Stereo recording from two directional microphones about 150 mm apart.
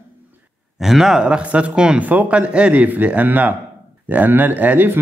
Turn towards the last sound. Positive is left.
turn(degrees=-10)  # may be behind; listen again after turning